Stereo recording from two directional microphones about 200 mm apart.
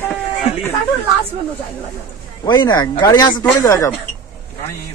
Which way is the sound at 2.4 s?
20° left (ahead or behind).